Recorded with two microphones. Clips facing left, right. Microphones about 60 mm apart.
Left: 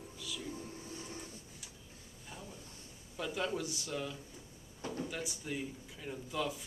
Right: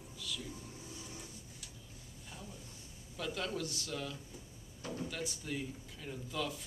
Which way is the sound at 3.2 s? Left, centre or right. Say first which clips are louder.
Left 2 dB; centre.